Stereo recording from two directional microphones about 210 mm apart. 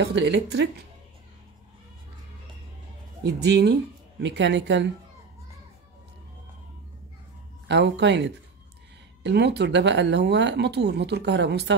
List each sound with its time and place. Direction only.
0.0 s speech: 55° right (ahead or behind)
3.3 s speech: 55° right (ahead or behind)
7.6 s speech: 55° right (ahead or behind)